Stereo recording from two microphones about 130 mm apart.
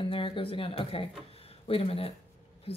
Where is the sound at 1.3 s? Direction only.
45° left (ahead or behind).